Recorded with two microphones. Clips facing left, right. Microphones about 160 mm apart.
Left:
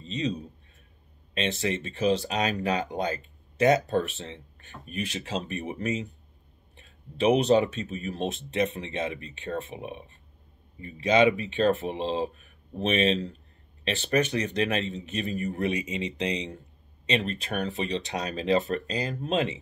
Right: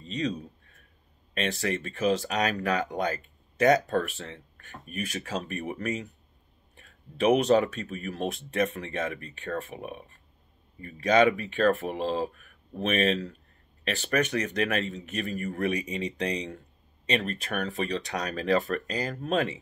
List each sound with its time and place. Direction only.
0.0 s speech: 25° left (ahead or behind)